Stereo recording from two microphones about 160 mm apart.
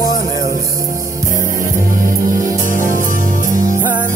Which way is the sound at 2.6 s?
60° left (ahead or behind).